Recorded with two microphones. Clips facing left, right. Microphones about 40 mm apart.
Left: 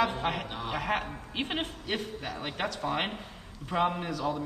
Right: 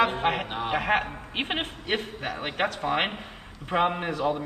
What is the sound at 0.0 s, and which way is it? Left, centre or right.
Speech, right.